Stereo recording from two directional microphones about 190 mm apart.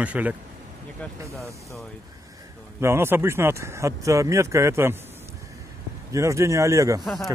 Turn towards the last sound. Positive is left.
turn(degrees=-15)  # may be behind; listen again after turning